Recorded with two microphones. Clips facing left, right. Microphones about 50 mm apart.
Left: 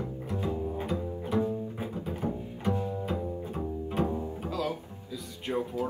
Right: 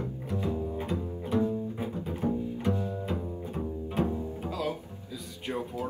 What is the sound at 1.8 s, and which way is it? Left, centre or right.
Double bass, left.